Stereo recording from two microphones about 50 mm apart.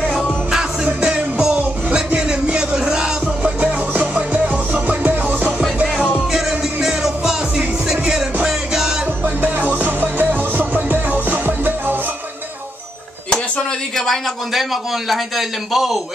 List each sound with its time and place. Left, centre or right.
1.0 s music: right
3.4 s music: right
5.9 s music: centre
9.2 s music: right
13.3 s a sound: centre
14.5 s a man's voice: centre